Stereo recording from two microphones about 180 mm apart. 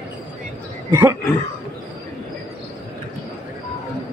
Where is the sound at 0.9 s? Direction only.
15° right (ahead or behind).